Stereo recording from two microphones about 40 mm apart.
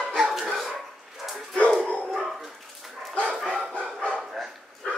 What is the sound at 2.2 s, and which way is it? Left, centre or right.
Dog, centre.